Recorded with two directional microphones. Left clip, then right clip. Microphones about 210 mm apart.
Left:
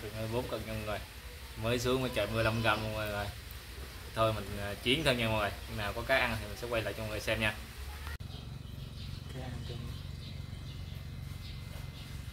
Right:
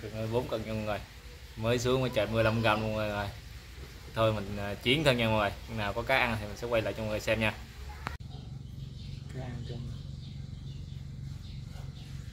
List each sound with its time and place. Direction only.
0.3 s a man's voice: 30° right (ahead or behind)